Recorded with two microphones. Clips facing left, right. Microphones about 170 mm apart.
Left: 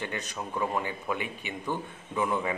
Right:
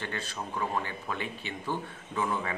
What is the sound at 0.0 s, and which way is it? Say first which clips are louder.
A man's voice: left 2 dB; 15° left (ahead or behind).